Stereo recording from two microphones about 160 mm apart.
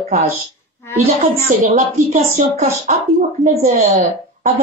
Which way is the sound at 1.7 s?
45° right (ahead or behind).